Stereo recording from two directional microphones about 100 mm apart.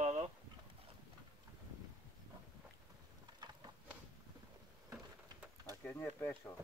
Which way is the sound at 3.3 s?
45° right (ahead or behind).